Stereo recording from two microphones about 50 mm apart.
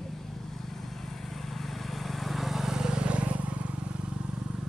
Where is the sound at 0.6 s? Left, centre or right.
Centre; by 4.2 s right.